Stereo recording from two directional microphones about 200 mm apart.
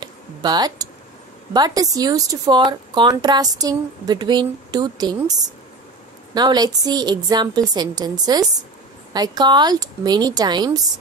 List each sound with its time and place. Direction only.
0.0 s speech: 20° right (ahead or behind)